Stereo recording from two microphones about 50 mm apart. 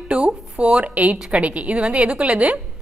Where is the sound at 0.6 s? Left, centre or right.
Right.